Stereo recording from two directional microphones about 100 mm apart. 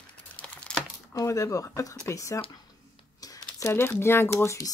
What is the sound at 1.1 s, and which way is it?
Speech, 35° left (ahead or behind).